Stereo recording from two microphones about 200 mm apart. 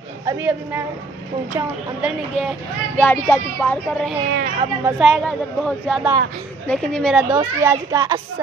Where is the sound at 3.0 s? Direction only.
10° left (ahead or behind).